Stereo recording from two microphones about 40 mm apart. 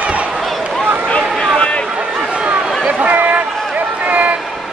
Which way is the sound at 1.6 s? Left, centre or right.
Left.